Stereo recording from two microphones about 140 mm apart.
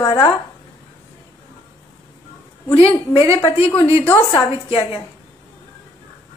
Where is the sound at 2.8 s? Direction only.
45° left (ahead or behind).